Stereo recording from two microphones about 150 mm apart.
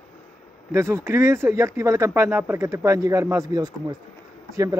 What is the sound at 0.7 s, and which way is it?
Speech, 15° right (ahead or behind).